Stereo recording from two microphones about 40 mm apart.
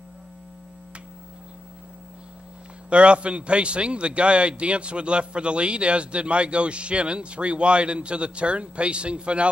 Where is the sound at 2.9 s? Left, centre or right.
Right.